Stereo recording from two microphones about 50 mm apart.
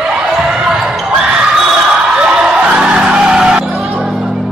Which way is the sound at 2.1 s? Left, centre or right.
Centre.